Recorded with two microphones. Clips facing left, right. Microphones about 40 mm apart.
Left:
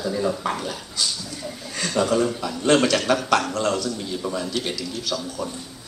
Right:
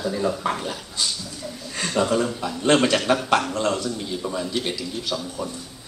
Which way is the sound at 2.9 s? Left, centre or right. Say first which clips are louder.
Even; centre.